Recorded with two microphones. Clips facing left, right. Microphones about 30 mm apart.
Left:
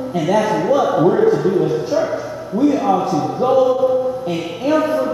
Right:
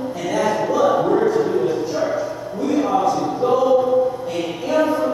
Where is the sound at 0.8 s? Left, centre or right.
Centre.